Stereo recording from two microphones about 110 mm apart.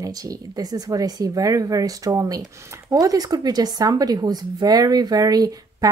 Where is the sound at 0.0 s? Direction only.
35° right (ahead or behind).